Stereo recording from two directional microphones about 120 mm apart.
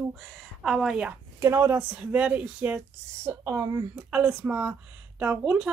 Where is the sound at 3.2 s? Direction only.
25° right (ahead or behind).